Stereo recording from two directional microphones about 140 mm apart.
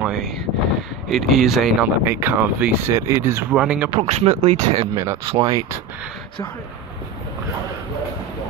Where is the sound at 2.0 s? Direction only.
15° right (ahead or behind).